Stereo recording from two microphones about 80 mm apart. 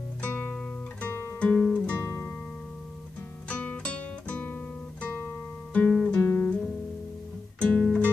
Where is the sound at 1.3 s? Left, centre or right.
Centre.